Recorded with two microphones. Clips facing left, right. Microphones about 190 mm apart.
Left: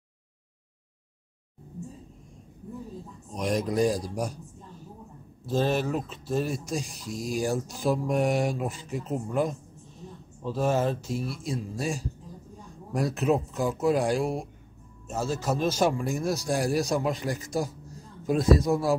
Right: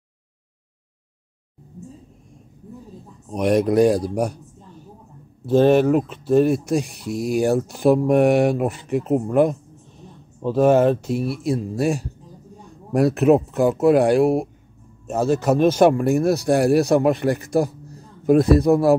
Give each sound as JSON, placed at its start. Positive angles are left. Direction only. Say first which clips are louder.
{"t": 3.3, "sound": "speech", "louder": "right 10 dB", "side_deg": -65}
{"t": 5.5, "sound": "speech", "louder": "right 11 dB", "side_deg": -60}